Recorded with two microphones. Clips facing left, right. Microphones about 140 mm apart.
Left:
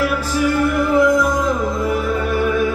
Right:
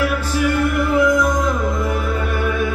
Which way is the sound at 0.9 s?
35° left (ahead or behind).